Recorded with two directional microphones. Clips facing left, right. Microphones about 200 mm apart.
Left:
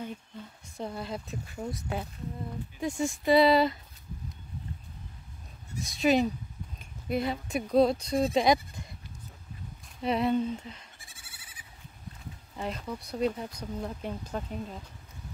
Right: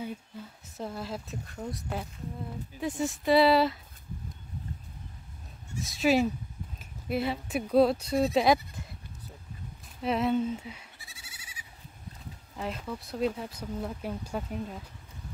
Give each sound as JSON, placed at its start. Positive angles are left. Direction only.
{"t": 0.0, "sound": "speech", "side_deg": -5}
{"t": 5.8, "sound": "speech", "side_deg": 0}
{"t": 10.0, "sound": "speech", "side_deg": 0}
{"t": 11.0, "sound": "goat", "side_deg": 50}
{"t": 12.5, "sound": "speech", "side_deg": 0}